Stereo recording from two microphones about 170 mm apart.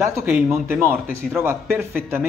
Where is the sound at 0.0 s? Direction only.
15° right (ahead or behind).